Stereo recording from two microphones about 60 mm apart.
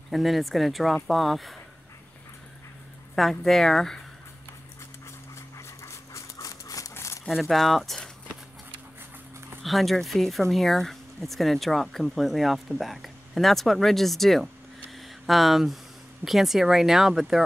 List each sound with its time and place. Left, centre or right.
0.1 s speech: centre
3.2 s speech: centre
5.8 s horse: left
6.9 s a sound: left
7.4 s speech: centre
9.6 s speech: centre